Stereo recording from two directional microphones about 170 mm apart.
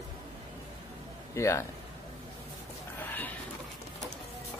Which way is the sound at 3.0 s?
10° left (ahead or behind).